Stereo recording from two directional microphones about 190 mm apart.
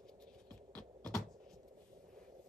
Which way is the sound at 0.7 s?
5° left (ahead or behind).